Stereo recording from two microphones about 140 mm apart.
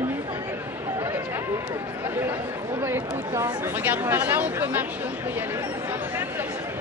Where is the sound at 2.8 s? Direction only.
20° right (ahead or behind).